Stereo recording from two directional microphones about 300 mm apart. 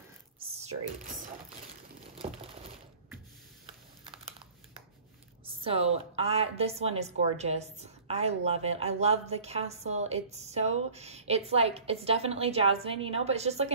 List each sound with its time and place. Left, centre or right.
0.6 s speech: right
3.6 s typing: centre
5.4 s a woman's voice: centre